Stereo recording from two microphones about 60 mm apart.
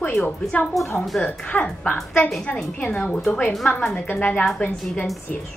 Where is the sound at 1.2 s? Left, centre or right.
Left.